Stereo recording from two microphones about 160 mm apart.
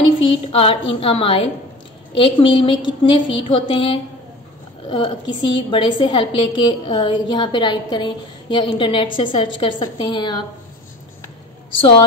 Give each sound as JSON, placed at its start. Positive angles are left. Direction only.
{"t": 0.5, "sound": "a woman's voice", "side_deg": 35}
{"t": 11.7, "sound": "a woman's voice", "side_deg": 35}